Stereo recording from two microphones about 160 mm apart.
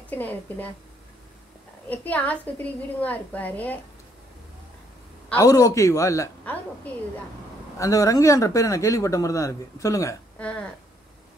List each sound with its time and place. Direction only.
0.1 s a woman's voice: 10° left (ahead or behind)
1.9 s a woman's voice: 10° left (ahead or behind)
5.3 s speech: 20° left (ahead or behind)
7.8 s speech: 20° left (ahead or behind)
10.4 s a woman's voice: 5° left (ahead or behind)